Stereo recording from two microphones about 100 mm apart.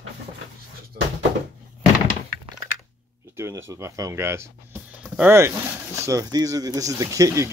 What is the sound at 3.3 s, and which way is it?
Speech, 30° right (ahead or behind).